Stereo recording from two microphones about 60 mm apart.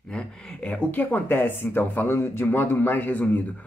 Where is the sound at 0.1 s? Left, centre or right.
Centre.